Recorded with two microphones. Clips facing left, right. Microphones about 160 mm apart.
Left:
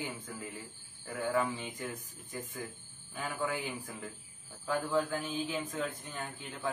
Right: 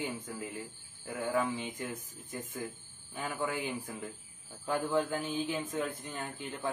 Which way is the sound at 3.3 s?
20° right (ahead or behind).